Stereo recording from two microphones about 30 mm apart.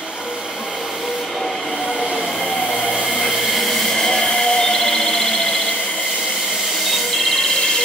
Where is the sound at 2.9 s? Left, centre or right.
Centre.